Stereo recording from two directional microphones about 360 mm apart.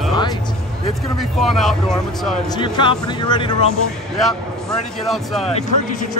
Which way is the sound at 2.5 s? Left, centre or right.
Centre.